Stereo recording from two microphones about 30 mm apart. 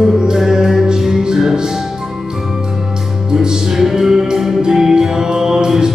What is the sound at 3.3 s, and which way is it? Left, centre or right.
Music, right.